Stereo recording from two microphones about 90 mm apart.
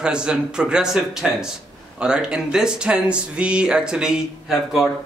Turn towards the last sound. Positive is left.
turn(degrees=-5)  # may be behind; listen again after turning